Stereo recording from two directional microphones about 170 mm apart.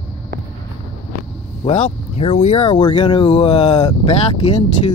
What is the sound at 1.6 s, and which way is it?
Speech, 35° left (ahead or behind).